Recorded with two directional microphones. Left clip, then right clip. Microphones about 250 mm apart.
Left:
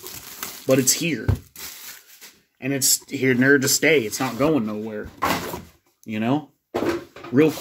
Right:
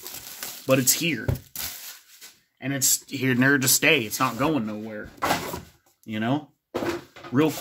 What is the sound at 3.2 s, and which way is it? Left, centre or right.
Speech, centre.